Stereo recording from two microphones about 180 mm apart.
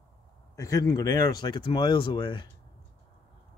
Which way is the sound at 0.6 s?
20° left (ahead or behind).